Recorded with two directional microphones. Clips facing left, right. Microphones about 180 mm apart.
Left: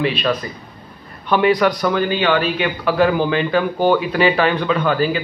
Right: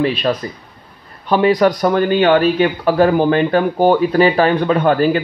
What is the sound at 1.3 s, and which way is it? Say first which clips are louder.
Speech: right 2 dB; 35° right (ahead or behind).